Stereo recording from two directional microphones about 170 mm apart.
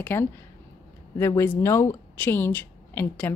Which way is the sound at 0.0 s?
15° left (ahead or behind).